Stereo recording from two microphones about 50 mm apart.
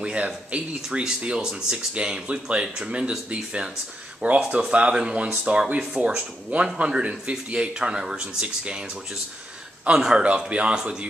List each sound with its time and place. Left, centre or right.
0.0 s speech: right
9.9 s speech: centre